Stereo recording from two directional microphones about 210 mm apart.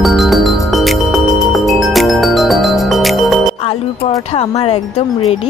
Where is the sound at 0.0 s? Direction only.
Centre (ahead or behind).